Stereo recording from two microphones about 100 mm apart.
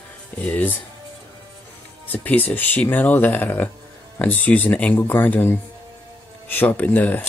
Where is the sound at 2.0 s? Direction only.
15° left (ahead or behind).